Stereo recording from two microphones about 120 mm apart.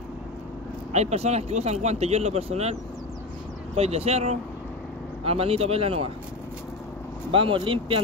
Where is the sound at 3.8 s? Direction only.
60° right (ahead or behind).